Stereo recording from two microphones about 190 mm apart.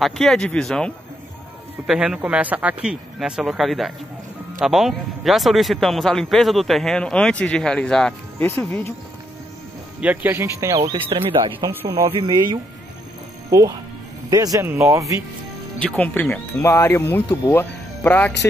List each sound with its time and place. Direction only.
0.0 s speech: centre (ahead or behind)
9.9 s speech: 10° right (ahead or behind); by 12.4 s 25° right (ahead or behind)
13.5 s speech: 20° right (ahead or behind)
16.0 s speech: 5° left (ahead or behind)